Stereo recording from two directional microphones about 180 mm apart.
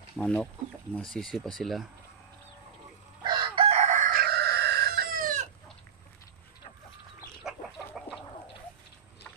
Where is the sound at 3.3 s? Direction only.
30° right (ahead or behind).